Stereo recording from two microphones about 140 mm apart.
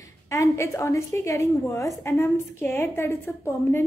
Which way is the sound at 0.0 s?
25° left (ahead or behind).